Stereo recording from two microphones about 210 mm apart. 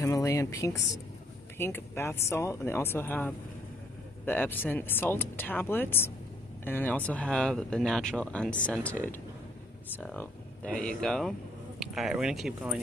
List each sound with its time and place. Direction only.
0.0 s speech: 15° left (ahead or behind); by 12.7 s centre (ahead or behind)